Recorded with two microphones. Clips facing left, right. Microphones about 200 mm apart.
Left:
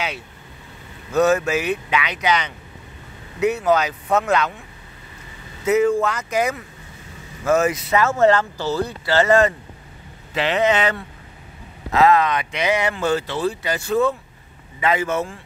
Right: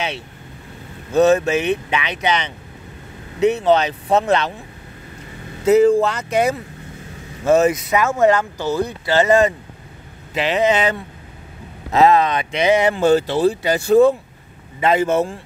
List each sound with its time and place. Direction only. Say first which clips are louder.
1.1 s speech: right 3 dB; 25° right (ahead or behind)
5.7 s speech: right 5 dB; 30° right (ahead or behind)
7.9 s speech: left 3 dB; 15° right (ahead or behind)
11.9 s speech: right 2 dB; 25° right (ahead or behind)